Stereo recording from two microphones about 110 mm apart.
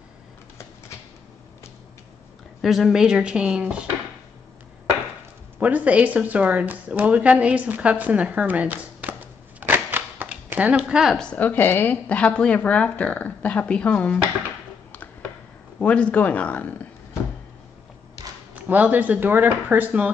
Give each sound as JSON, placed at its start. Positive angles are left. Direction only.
{"t": 2.6, "sound": "speech", "side_deg": 0}
{"t": 5.6, "sound": "a woman's voice", "side_deg": -15}
{"t": 11.1, "sound": "speech", "side_deg": 10}
{"t": 15.8, "sound": "speech", "side_deg": 10}
{"t": 18.5, "sound": "speech", "side_deg": -15}